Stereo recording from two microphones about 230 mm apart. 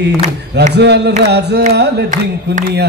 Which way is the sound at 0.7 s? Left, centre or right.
Right.